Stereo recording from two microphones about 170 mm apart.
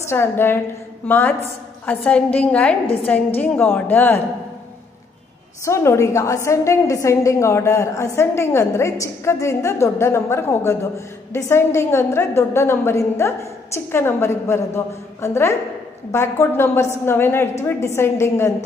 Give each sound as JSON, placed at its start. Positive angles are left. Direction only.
{"t": 0.0, "sound": "a woman's voice", "side_deg": 15}
{"t": 5.7, "sound": "a woman's voice", "side_deg": 15}